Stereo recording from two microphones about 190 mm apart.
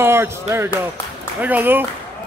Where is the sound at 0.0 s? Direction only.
10° right (ahead or behind).